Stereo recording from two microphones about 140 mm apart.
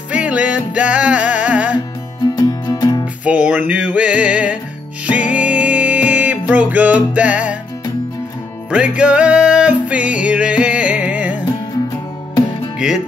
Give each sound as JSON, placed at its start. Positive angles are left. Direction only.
{"t": 0.1, "sound": "music", "side_deg": -10}
{"t": 2.3, "sound": "music", "side_deg": 25}
{"t": 3.3, "sound": "music", "side_deg": -10}
{"t": 8.6, "sound": "music", "side_deg": -10}
{"t": 12.7, "sound": "music", "side_deg": -5}